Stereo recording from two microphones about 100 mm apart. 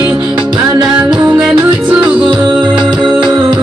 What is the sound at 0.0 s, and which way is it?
Music, 50° right (ahead or behind).